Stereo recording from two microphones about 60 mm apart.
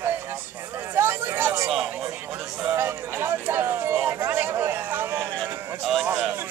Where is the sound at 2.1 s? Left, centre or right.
Right.